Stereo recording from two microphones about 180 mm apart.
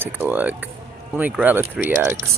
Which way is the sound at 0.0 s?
10° right (ahead or behind).